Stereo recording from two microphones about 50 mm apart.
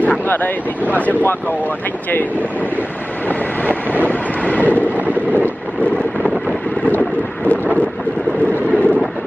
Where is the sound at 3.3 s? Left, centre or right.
Left.